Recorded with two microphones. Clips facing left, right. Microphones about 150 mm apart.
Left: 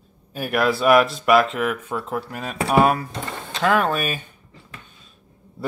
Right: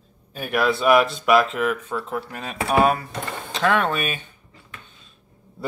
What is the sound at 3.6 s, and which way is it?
Speech, 5° left (ahead or behind).